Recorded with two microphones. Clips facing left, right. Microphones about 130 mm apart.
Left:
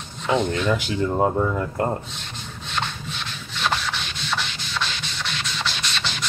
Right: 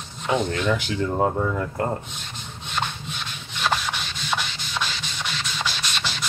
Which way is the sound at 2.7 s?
5° right (ahead or behind).